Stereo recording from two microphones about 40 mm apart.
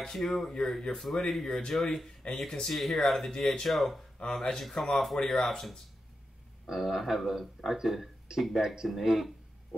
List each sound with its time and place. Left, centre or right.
0.1 s a man's voice: centre
2.7 s a man's voice: centre
4.3 s a man's voice: centre
6.7 s a man's voice: centre